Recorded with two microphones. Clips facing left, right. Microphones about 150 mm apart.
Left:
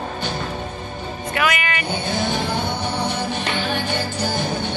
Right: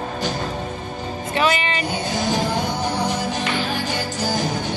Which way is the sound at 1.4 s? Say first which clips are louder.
Right 2 dB; 30° right (ahead or behind).